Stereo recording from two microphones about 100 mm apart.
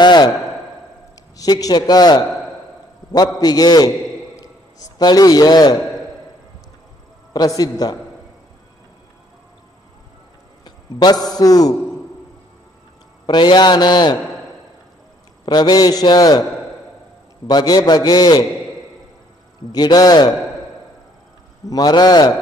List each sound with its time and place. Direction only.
0.0 s a sound: 45° left (ahead or behind)
1.3 s a man's voice: 40° left (ahead or behind)
3.3 s a man's voice: 40° left (ahead or behind)
7.3 s a man's voice: 40° left (ahead or behind)
10.6 s a man's voice: 45° left (ahead or behind)
13.3 s a man's voice: 50° left (ahead or behind)
15.4 s a man's voice: 45° left (ahead or behind)
17.5 s a man's voice: 40° left (ahead or behind)
19.7 s a man's voice: 40° left (ahead or behind)
21.6 s a man's voice: 40° left (ahead or behind)